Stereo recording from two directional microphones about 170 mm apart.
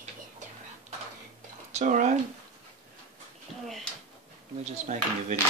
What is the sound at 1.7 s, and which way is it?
Speech, 45° right (ahead or behind).